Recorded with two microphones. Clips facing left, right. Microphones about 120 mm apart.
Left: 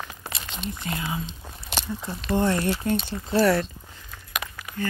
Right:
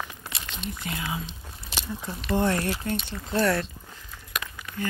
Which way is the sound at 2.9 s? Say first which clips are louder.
Left 5 dB; 30° left (ahead or behind).